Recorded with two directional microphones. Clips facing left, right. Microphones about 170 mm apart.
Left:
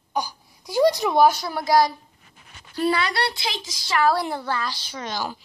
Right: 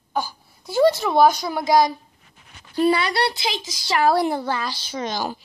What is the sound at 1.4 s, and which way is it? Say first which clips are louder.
A woman's voice: right 2 dB; 20° right (ahead or behind).